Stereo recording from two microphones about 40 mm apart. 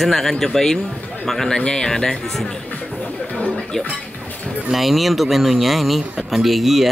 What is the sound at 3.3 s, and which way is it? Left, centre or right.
Music, left.